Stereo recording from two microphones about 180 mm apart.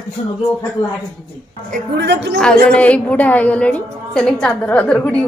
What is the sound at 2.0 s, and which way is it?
Speech, 70° right (ahead or behind).